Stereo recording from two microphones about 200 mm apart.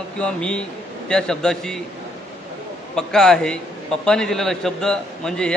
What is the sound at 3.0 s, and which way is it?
A man's voice, 5° left (ahead or behind).